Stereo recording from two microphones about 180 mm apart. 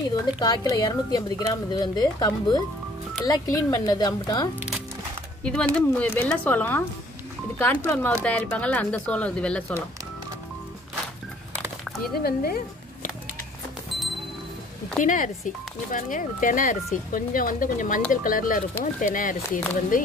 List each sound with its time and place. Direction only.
0.1 s speech: 20° left (ahead or behind)
5.4 s speech: 5° left (ahead or behind)
12.2 s speech: 60° left (ahead or behind)
15.0 s speech: 45° left (ahead or behind)